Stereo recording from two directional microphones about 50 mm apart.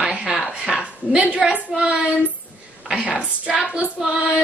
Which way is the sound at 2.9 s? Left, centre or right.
Centre.